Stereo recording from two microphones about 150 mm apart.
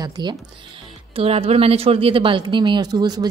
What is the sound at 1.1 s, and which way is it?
A woman's voice, 40° right (ahead or behind).